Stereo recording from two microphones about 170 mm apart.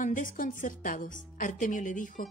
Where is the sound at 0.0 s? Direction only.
50° left (ahead or behind).